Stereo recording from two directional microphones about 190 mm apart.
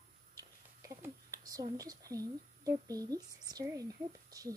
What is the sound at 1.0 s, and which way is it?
A woman's voice, 20° right (ahead or behind).